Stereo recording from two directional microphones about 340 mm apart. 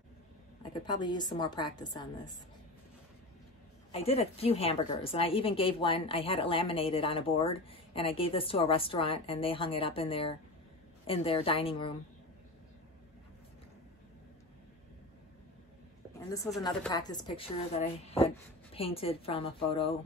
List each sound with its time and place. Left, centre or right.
0.6 s a woman's voice: centre
3.9 s a woman's voice: centre
16.6 s a woman's voice: centre